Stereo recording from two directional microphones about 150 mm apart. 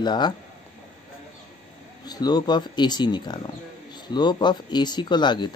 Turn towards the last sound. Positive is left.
turn(degrees=30)  # may be behind; listen again after turning